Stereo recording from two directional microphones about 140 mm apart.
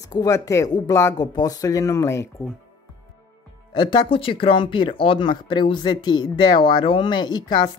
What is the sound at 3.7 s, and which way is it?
Speech, 35° left (ahead or behind).